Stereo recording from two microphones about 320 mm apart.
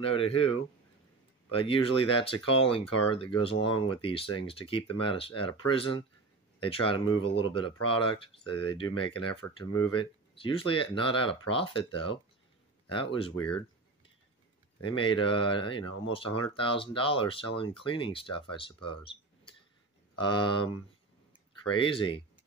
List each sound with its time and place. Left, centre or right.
0.0 s speech: centre
1.5 s speech: centre
14.8 s speech: centre
18.9 s cash register: centre
20.2 s speech: centre